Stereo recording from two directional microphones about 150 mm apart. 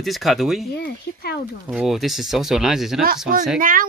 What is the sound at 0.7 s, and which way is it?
Speech, 90° left.